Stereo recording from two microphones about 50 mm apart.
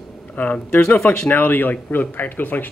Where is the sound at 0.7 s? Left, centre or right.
Left.